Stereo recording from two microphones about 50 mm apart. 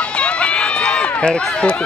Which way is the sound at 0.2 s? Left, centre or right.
Left.